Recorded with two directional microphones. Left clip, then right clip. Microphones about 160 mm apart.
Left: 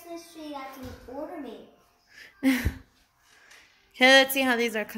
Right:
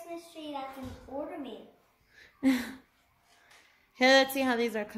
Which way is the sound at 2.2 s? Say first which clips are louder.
Left 3 dB; centre (ahead or behind).